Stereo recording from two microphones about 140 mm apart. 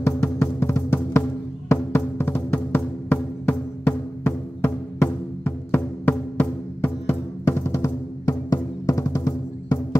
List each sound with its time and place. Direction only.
0.0 s music: 15° left (ahead or behind)